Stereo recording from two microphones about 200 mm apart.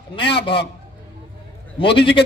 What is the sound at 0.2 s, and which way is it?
Speech, 60° left (ahead or behind).